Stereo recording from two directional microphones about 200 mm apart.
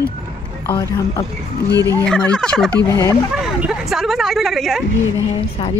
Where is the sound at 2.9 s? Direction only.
15° left (ahead or behind).